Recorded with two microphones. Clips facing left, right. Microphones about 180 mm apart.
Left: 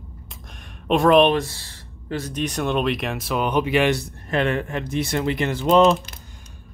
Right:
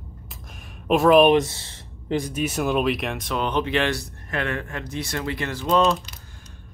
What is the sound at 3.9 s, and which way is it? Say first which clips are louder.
Speech: left 5 dB; 25° left (ahead or behind).